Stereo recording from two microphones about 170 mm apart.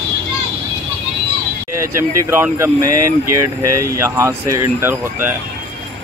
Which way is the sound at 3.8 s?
15° right (ahead or behind).